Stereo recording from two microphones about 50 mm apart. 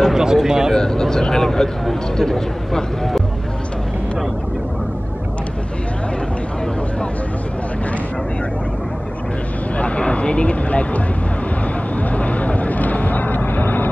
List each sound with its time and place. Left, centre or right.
0.0 s a sound: centre
0.4 s speech: centre
0.7 s speech: centre
9.8 s speech: left
12.2 s vehicle: left